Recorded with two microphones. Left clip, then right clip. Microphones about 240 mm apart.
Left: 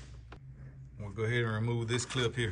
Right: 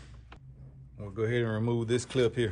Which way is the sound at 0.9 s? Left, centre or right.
Centre.